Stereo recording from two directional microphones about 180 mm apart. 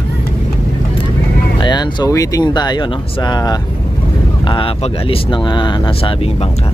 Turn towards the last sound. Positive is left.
turn(degrees=30)  # may be behind; listen again after turning